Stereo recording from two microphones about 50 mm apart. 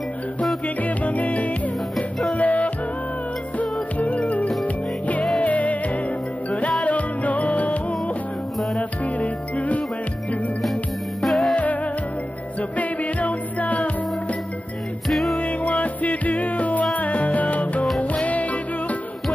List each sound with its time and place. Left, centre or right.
0.8 s music: left
6.8 s music: left
11.2 s music: centre
11.5 s music: left
15.0 s music: centre
15.3 s music: left